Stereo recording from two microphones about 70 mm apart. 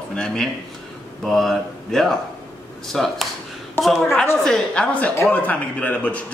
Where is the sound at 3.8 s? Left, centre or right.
Left.